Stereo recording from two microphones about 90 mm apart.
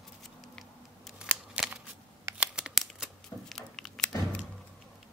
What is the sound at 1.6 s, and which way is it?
Scissors, 15° right (ahead or behind).